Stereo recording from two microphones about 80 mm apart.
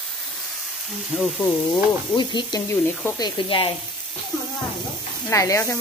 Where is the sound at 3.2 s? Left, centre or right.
Left.